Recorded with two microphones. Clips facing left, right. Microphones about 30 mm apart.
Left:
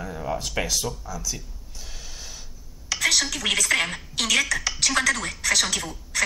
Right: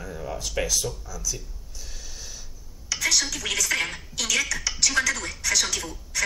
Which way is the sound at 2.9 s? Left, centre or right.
Centre.